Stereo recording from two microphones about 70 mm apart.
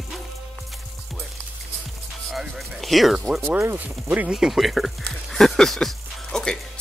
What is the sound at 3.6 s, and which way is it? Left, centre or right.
Speech, right.